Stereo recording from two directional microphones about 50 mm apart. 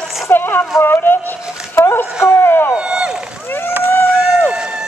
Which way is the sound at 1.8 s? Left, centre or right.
Left.